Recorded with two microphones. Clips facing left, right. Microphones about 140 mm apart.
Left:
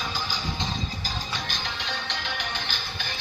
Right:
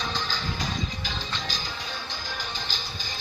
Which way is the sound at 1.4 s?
60° left (ahead or behind).